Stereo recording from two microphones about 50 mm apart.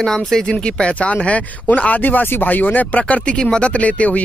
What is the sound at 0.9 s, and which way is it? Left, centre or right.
Speech, left.